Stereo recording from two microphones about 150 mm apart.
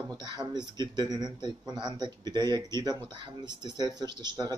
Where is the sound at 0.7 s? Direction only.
30° right (ahead or behind).